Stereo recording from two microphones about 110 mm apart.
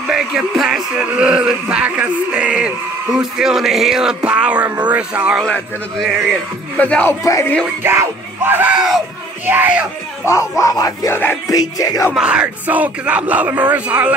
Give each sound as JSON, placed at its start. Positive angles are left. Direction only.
{"t": 0.1, "sound": "speech", "side_deg": -5}
{"t": 5.4, "sound": "a man's voice", "side_deg": 5}
{"t": 7.8, "sound": "music", "side_deg": -20}
{"t": 8.7, "sound": "speech", "side_deg": 0}
{"t": 9.5, "sound": "speech", "side_deg": -15}
{"t": 10.2, "sound": "speech", "side_deg": 30}
{"t": 12.1, "sound": "speech", "side_deg": -10}